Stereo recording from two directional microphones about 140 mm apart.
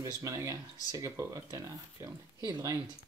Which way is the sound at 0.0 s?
20° right (ahead or behind).